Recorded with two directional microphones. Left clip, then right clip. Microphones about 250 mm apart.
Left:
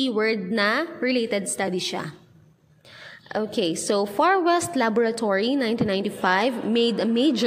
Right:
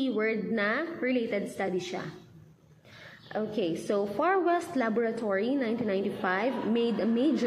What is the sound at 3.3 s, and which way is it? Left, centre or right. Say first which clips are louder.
A woman's voice: left 6 dB; left.